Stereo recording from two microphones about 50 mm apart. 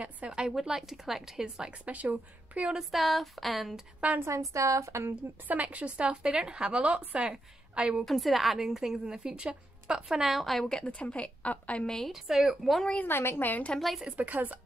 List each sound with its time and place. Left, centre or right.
0.3 s a woman's voice: centre
1.9 s a woman's voice: right
2.9 s speech: centre
4.3 s a woman's voice: right
5.5 s a woman's voice: right
8.0 s a woman's voice: centre
10.6 s a woman's voice: centre
11.8 s a woman's voice: centre
12.1 s speech: centre
13.1 s a woman's voice: left
13.5 s a woman's voice: left
13.7 s speech: centre
14.1 s speech: right